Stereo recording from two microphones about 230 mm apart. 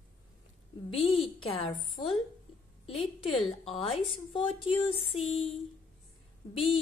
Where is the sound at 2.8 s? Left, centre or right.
Left.